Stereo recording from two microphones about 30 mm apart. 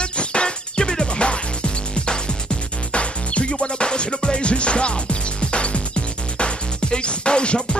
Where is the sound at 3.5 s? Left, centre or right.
Left.